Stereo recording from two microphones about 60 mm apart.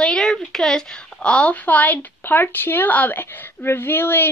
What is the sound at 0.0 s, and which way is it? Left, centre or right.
A woman's voice, centre.